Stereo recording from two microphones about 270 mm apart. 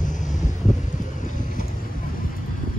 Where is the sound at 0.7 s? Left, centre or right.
Left.